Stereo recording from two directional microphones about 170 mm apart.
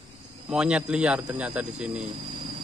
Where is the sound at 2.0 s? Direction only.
35° right (ahead or behind).